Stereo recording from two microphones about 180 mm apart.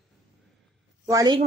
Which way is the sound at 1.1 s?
20° right (ahead or behind).